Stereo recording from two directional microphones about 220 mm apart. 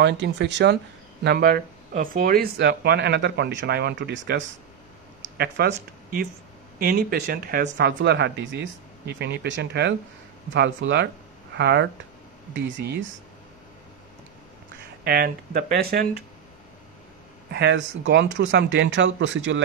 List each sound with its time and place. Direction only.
0.0 s speech: 50° right (ahead or behind)
5.4 s speech: 45° right (ahead or behind)
15.0 s speech: 45° right (ahead or behind)
17.5 s speech: 50° right (ahead or behind)